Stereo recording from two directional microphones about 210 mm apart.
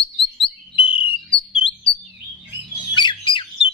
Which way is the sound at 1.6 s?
25° left (ahead or behind).